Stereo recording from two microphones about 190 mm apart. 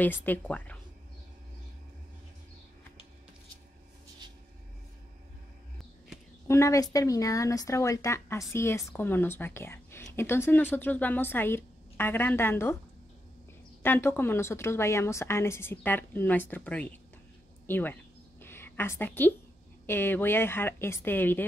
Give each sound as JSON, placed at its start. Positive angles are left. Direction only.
{"t": 0.0, "sound": "speech", "side_deg": 10}
{"t": 6.4, "sound": "speech", "side_deg": 15}
{"t": 13.8, "sound": "speech", "side_deg": 10}
{"t": 18.4, "sound": "a sound", "side_deg": 10}
{"t": 19.9, "sound": "speech", "side_deg": 10}